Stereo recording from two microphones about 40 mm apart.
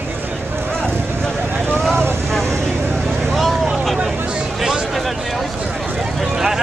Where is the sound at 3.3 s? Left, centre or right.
Centre.